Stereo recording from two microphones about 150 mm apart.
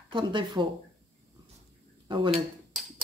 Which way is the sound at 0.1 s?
30° right (ahead or behind).